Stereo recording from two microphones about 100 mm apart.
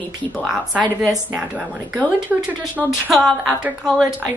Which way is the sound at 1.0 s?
10° right (ahead or behind).